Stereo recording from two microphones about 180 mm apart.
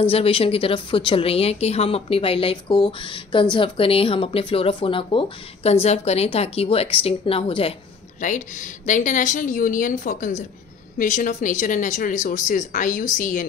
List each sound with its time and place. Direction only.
0.0 s speech: 30° left (ahead or behind)
8.2 s speech: 45° left (ahead or behind)